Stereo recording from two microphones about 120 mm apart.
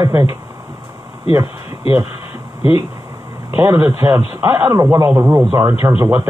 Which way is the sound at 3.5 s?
25° right (ahead or behind).